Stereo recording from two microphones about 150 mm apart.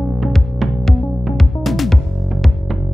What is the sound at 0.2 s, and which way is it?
Music, centre (ahead or behind).